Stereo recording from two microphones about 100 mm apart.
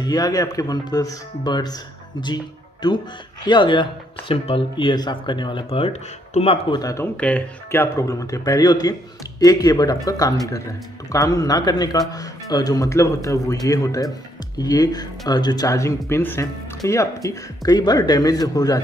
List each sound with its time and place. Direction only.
0.0 s speech: 40° left (ahead or behind); by 5.9 s 65° left (ahead or behind)
6.4 s speech: 75° left (ahead or behind)
6.7 s speech: 35° left (ahead or behind)
7.2 s speech: 10° left (ahead or behind)
7.7 s speech: 30° left (ahead or behind)